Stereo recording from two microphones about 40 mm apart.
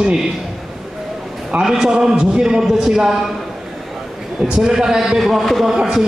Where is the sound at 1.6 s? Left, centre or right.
Centre.